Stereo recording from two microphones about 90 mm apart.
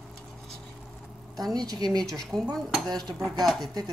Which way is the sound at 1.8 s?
50° right (ahead or behind).